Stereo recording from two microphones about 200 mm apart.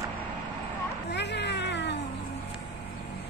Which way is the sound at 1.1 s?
60° left (ahead or behind).